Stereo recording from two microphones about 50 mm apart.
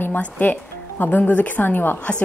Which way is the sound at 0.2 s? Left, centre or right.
Left.